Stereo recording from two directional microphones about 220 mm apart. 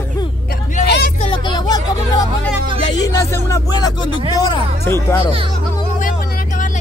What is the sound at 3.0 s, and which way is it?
Speech, 15° left (ahead or behind).